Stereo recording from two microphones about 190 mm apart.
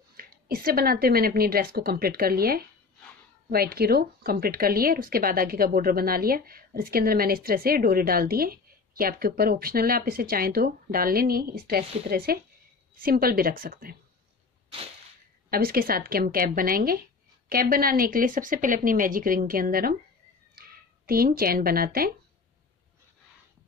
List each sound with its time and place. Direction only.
0.2 s speech: 50° right (ahead or behind)
15.5 s speech: 50° right (ahead or behind)